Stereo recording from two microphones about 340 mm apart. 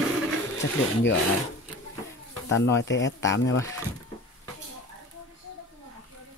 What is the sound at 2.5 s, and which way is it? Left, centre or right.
Speech, left.